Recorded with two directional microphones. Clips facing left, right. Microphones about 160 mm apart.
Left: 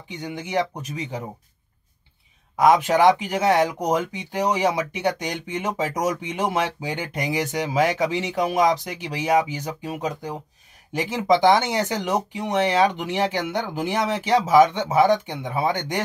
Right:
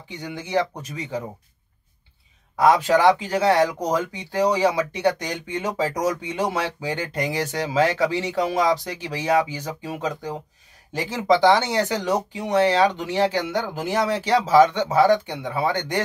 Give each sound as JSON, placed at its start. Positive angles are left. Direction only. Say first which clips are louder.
{"t": 0.1, "sound": "speech", "louder": "right 1 dB", "side_deg": 15}
{"t": 2.6, "sound": "speech", "louder": "even", "side_deg": 15}